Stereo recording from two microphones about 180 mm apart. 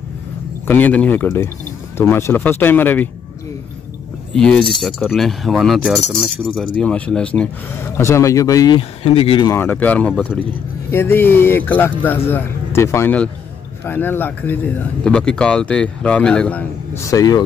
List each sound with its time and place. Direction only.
0.7 s speech: 10° left (ahead or behind)
4.3 s a man's voice: 5° left (ahead or behind); by 9.5 s 30° left (ahead or behind)
9.5 s a man's voice: 10° left (ahead or behind)
17.1 s speech: 20° left (ahead or behind)